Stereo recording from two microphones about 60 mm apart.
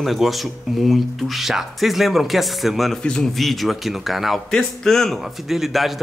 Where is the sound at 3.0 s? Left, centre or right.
Centre.